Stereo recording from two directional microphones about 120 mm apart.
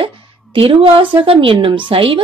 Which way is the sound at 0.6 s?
45° right (ahead or behind).